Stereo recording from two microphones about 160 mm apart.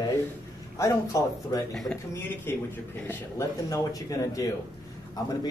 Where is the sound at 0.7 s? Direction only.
20° left (ahead or behind).